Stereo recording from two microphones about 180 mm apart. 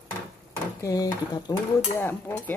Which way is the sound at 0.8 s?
20° left (ahead or behind).